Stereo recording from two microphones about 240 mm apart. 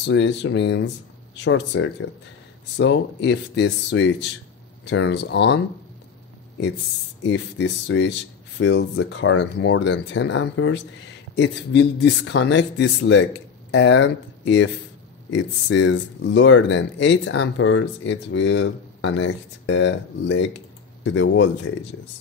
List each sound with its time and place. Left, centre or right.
0.0 s speech: left
7.2 s speech: left